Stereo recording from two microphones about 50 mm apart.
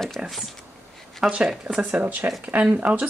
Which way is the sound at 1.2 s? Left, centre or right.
Centre.